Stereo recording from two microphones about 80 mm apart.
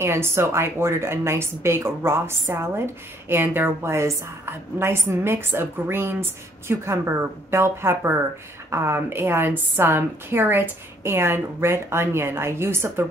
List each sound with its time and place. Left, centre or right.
0.0 s a woman's voice: right